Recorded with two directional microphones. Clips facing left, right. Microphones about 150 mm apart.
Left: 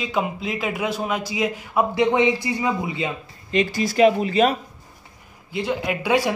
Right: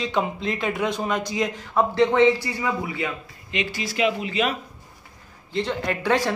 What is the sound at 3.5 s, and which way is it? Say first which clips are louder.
Speech: left 7 dB; 40° left (ahead or behind).